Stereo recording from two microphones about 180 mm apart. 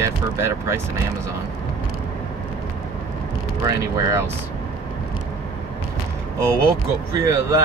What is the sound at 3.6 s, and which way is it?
Speech, 15° right (ahead or behind).